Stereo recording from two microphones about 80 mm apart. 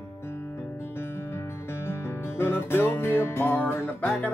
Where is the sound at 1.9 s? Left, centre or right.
Left.